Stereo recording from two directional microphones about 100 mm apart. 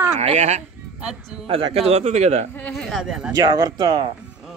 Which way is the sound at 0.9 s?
10° right (ahead or behind).